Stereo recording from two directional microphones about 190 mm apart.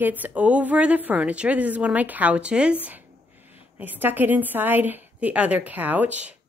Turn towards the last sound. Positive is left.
turn(degrees=-10)  # may be behind; listen again after turning